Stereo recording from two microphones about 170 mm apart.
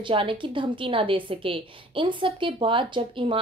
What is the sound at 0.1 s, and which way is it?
A woman's voice, 30° right (ahead or behind).